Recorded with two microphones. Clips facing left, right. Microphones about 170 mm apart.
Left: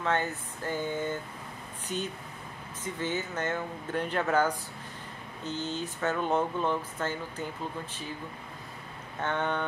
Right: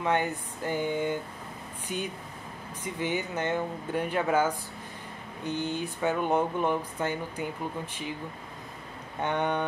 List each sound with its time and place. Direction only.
0.0 s speech: 15° right (ahead or behind)
9.2 s speech: 15° right (ahead or behind)